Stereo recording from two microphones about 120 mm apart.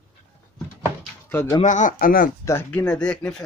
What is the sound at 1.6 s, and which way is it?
Speech, 90° left.